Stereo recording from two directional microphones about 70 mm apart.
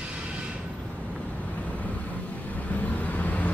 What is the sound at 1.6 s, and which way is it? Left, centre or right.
Vehicle, left.